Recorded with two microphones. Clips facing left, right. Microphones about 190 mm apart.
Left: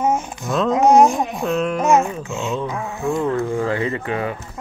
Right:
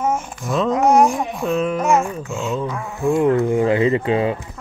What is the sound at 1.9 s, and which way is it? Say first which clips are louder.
Dog: left 3 dB; 20° left (ahead or behind).